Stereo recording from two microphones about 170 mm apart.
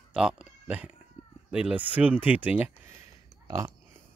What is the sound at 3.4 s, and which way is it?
Speech, 20° right (ahead or behind).